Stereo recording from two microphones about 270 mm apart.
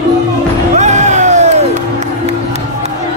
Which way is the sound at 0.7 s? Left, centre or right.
Right.